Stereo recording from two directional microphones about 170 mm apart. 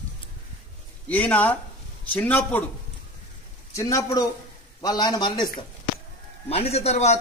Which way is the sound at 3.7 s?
20° left (ahead or behind).